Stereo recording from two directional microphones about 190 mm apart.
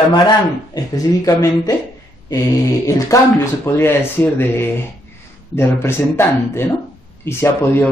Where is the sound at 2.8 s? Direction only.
15° left (ahead or behind).